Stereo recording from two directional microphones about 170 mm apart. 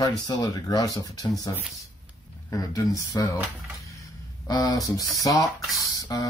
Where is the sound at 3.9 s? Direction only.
20° left (ahead or behind).